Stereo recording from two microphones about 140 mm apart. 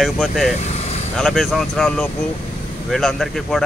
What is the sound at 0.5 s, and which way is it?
Vehicle, 50° left (ahead or behind).